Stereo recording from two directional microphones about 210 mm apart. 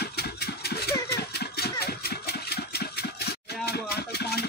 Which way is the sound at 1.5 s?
50° left (ahead or behind).